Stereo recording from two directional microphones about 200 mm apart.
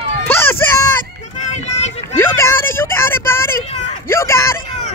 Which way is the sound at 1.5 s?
35° left (ahead or behind).